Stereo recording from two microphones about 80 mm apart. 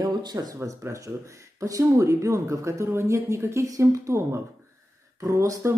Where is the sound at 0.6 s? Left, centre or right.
Right.